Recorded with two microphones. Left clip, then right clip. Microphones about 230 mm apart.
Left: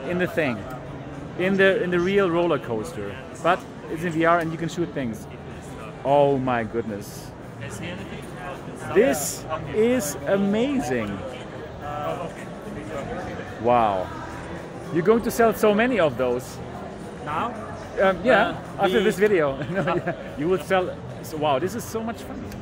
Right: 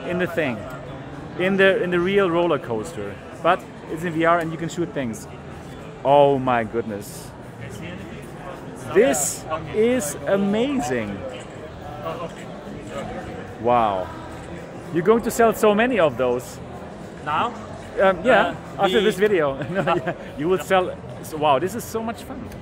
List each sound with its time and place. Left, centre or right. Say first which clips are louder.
0.1 s speech: right 1 dB; centre
1.4 s speech: right 2 dB; centre
6.0 s speech: right 4 dB; right
8.9 s speech: right 2 dB; centre
13.7 s speech: right 1 dB; centre
15.0 s speech: right 2 dB; centre
18.0 s speech: right 2 dB; centre